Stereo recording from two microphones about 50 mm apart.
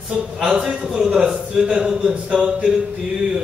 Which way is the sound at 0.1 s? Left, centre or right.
Centre.